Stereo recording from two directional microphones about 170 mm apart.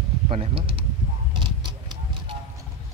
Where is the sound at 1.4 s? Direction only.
30° right (ahead or behind).